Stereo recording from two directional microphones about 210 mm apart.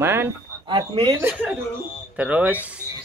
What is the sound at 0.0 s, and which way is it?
Speech, 10° right (ahead or behind).